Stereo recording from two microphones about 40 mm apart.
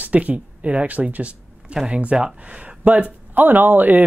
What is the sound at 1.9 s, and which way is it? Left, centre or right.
Speech, right.